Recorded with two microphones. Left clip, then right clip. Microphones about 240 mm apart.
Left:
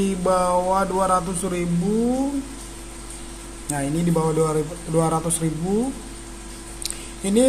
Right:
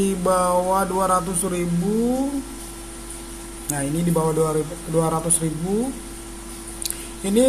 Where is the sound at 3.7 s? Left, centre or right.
Centre.